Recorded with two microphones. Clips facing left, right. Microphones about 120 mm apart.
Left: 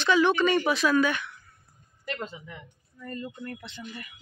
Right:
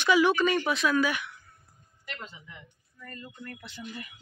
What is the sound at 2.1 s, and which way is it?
Speech, 50° left (ahead or behind).